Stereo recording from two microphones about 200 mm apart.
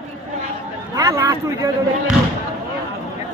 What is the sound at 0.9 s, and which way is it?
Speech, 15° right (ahead or behind).